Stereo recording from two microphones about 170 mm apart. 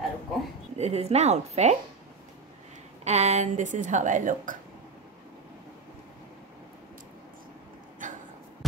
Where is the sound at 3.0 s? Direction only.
40° right (ahead or behind).